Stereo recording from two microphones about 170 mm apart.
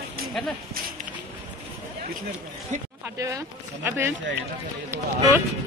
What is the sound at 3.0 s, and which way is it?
Speech, 20° right (ahead or behind).